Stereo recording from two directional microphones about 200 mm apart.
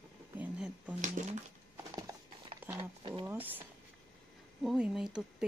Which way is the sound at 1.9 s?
15° right (ahead or behind).